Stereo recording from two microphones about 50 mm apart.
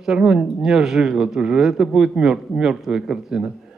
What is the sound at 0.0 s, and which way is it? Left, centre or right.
A man's voice, centre.